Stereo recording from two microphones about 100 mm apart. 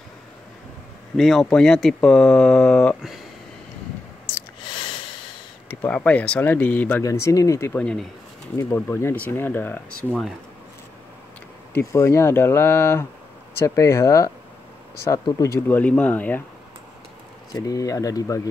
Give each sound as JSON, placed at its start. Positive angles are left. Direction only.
{"t": 1.1, "sound": "speech", "side_deg": 5}
{"t": 5.7, "sound": "speech", "side_deg": 20}
{"t": 7.0, "sound": "speech", "side_deg": 30}
{"t": 7.7, "sound": "speech", "side_deg": 10}
{"t": 8.5, "sound": "speech", "side_deg": 25}
{"t": 11.7, "sound": "speech", "side_deg": 30}
{"t": 15.7, "sound": "speech", "side_deg": 15}
{"t": 17.6, "sound": "speech", "side_deg": 35}